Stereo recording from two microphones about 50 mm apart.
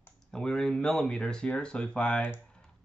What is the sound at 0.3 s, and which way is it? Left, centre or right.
Speech, centre.